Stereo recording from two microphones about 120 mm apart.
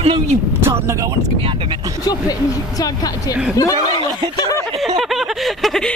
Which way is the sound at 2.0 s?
30° left (ahead or behind).